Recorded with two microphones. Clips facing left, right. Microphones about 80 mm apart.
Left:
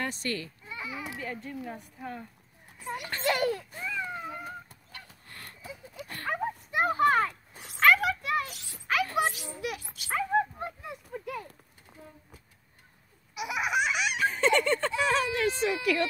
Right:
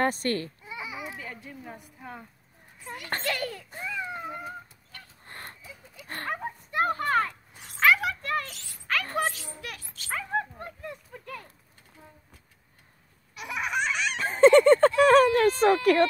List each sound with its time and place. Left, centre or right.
0.0 s a child's voice: right
0.7 s a sound: centre
1.2 s a woman's voice: centre
3.3 s a child's voice: centre
3.8 s baby cry: centre
5.2 s a sound: right
5.6 s horse: left
6.3 s a sound: centre
9.5 s dog: centre
13.3 s baby laughter: centre
14.1 s a sound: right
15.0 s speech: right